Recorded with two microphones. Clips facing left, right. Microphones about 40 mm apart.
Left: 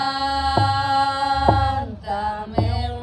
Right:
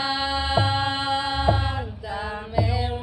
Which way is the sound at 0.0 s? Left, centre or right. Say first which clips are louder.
Left 4 dB; right.